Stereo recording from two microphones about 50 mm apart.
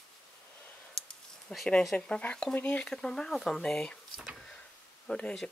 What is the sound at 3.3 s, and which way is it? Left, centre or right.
Speech, centre.